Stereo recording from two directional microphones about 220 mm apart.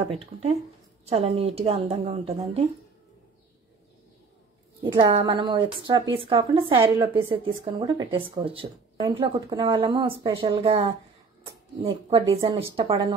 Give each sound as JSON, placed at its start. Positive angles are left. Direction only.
{"t": 0.1, "sound": "a woman's voice", "side_deg": -25}
{"t": 4.8, "sound": "a woman's voice", "side_deg": -20}